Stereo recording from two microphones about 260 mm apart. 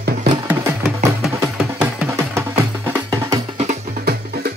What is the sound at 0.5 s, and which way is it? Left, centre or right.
Music, centre.